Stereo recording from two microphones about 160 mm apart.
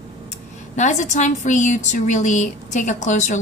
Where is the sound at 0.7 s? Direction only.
50° left (ahead or behind).